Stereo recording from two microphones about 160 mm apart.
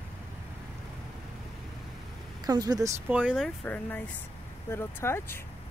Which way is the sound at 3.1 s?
5° right (ahead or behind).